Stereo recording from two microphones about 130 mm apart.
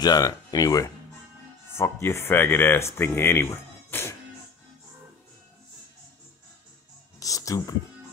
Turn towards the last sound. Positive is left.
turn(degrees=25)  # may be behind; listen again after turning